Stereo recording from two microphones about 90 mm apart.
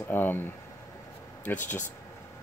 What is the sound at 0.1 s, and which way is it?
Speech, 20° left (ahead or behind).